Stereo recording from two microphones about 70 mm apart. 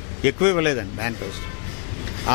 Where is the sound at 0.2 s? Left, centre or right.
Centre.